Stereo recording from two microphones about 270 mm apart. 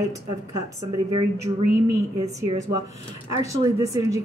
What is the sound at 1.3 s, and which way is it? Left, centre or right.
Speech, right.